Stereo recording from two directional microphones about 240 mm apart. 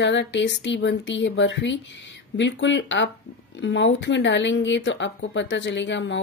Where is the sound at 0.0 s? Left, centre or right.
Left.